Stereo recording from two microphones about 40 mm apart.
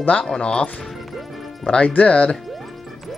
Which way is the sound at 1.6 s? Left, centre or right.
Left.